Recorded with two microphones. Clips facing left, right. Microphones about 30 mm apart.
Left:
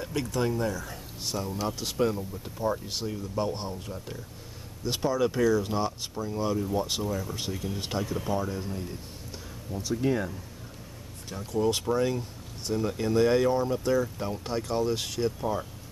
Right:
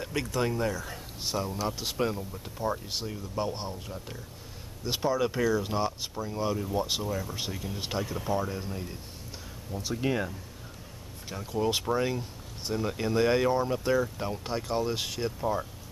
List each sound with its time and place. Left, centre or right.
0.0 s speech: centre
9.8 s speech: right
11.2 s speech: centre